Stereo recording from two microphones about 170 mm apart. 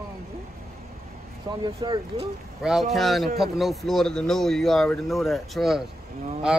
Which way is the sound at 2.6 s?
Centre (ahead or behind).